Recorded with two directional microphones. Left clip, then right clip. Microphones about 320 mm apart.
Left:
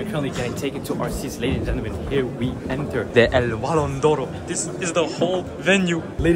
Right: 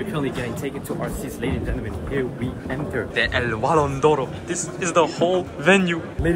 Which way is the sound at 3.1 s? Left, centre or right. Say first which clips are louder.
Left 6 dB; left.